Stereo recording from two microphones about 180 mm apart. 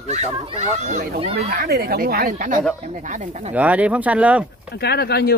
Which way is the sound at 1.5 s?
65° right (ahead or behind).